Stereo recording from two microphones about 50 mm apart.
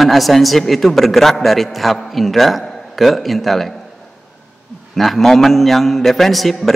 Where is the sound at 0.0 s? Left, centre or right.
Centre.